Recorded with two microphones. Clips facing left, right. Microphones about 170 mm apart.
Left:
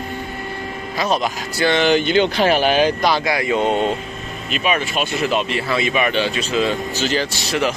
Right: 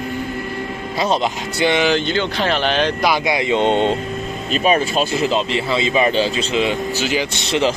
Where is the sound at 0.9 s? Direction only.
25° right (ahead or behind).